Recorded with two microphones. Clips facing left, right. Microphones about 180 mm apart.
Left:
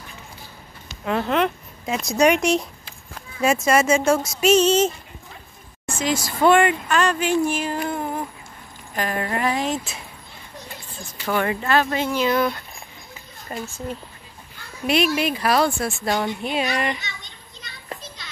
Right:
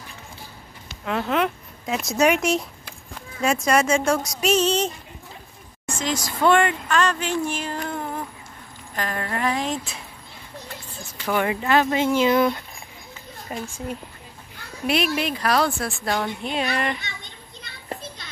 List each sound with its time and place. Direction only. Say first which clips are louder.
1.0 s speech: left 2 dB; centre (ahead or behind)
11.3 s speech: even; 15° right (ahead or behind)
14.9 s speech: left 3 dB; centre (ahead or behind)
17.0 s children playing: even; 55° right (ahead or behind)